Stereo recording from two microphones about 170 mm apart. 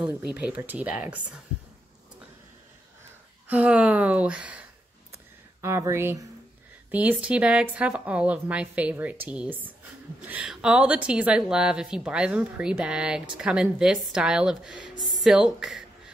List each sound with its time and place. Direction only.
0.0 s a woman's voice: 5° right (ahead or behind)
3.4 s speech: 10° right (ahead or behind)
5.1 s a sound: 15° right (ahead or behind)
6.9 s a woman's voice: 10° right (ahead or behind)